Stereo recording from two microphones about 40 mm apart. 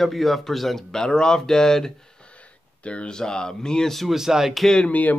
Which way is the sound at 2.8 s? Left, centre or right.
Left.